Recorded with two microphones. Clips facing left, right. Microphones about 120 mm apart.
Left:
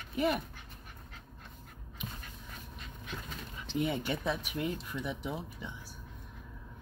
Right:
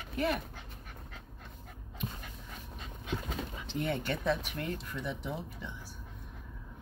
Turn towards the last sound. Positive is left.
turn(degrees=10)  # may be behind; listen again after turning